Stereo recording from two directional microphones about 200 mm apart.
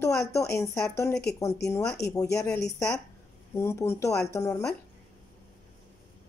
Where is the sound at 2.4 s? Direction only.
15° left (ahead or behind).